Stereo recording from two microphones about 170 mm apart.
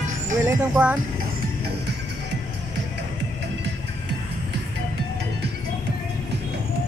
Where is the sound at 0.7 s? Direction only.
10° right (ahead or behind).